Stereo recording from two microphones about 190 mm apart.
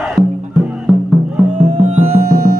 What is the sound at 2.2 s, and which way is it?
Music, 50° right (ahead or behind).